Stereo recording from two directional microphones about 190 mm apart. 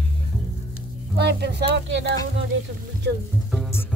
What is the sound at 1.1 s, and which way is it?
Speech, 60° right (ahead or behind).